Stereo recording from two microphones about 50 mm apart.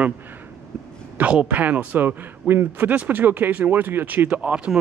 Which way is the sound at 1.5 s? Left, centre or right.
Right.